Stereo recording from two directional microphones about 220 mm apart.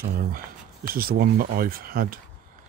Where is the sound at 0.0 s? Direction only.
40° right (ahead or behind).